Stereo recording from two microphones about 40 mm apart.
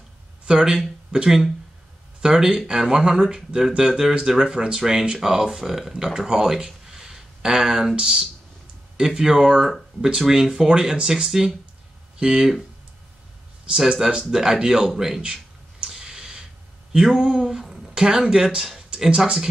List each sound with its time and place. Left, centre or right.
0.5 s speech: centre
14.3 s speech: centre
15.9 s a sound: centre
17.9 s speech: centre
19.0 s speech: right